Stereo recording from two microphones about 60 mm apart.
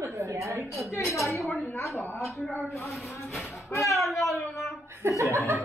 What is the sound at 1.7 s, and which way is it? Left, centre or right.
Speech, left.